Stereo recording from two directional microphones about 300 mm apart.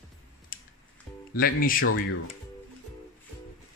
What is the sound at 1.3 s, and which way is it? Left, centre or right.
Speech, left.